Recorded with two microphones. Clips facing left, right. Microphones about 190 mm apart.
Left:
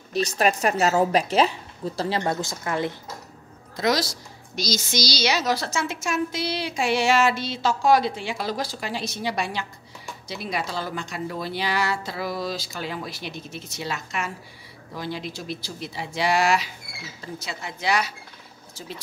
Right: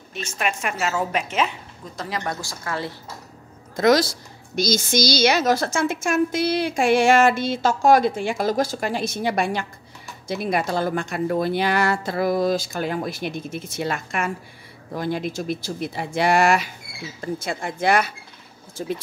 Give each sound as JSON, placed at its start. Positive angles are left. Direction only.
{"t": 0.1, "sound": "a woman's voice", "side_deg": 35}
{"t": 3.7, "sound": "a woman's voice", "side_deg": -50}